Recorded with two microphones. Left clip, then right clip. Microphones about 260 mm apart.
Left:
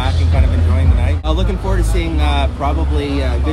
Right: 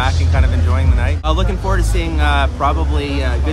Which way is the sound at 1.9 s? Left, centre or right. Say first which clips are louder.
Right 2 dB; centre.